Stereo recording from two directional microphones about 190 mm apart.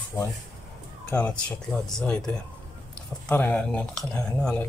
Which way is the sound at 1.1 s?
5° left (ahead or behind).